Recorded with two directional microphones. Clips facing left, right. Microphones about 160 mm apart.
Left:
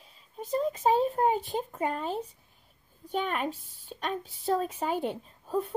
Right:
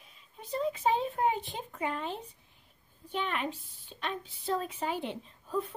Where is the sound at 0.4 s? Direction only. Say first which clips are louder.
Left 3 dB; 45° left (ahead or behind).